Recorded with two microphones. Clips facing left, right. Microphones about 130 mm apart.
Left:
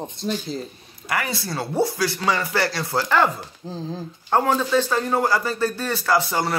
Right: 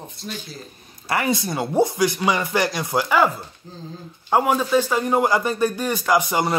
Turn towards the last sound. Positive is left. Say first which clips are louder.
# right 2 dB
turn(degrees=-15)  # may be behind; listen again after turning